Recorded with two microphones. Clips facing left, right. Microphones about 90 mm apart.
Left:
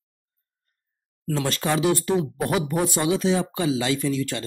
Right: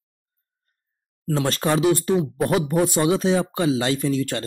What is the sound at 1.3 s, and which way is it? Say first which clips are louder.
Speech: right 3 dB; 40° right (ahead or behind).